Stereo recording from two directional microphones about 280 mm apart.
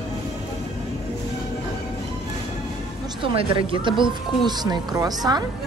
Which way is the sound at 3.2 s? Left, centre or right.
Centre.